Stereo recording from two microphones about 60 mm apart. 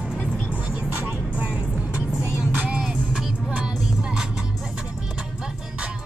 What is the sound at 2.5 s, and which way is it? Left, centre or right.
Music, right.